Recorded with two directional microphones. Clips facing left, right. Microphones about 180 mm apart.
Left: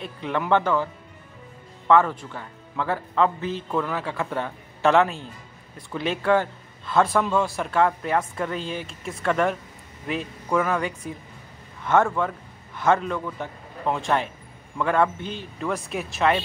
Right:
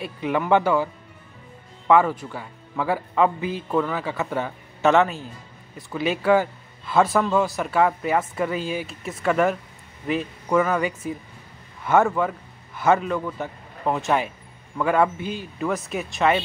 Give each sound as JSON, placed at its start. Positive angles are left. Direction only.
{"t": 0.0, "sound": "speech", "side_deg": -10}
{"t": 1.9, "sound": "a man's voice", "side_deg": -10}